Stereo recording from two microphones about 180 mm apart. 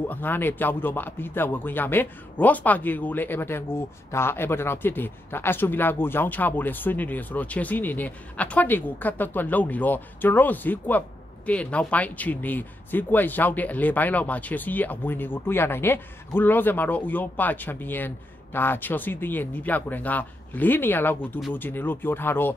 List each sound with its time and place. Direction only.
0.1 s speech: 10° left (ahead or behind)